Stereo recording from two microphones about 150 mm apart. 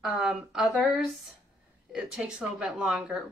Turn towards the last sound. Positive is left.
turn(degrees=0)  # may be behind; listen again after turning